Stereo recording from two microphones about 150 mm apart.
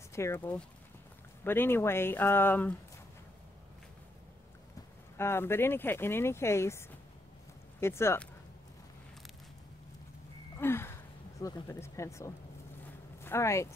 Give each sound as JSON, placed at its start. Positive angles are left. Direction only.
{"t": 0.1, "sound": "speech", "side_deg": 20}
{"t": 5.1, "sound": "speech", "side_deg": 15}
{"t": 10.6, "sound": "a sound", "side_deg": 15}
{"t": 11.4, "sound": "speech", "side_deg": 20}